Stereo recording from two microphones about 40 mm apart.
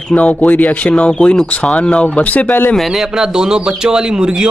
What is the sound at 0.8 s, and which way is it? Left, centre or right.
Speech, left.